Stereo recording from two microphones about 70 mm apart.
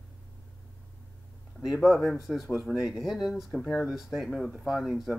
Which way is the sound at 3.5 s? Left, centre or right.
Centre.